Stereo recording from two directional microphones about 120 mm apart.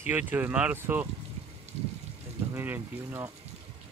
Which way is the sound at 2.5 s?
20° right (ahead or behind).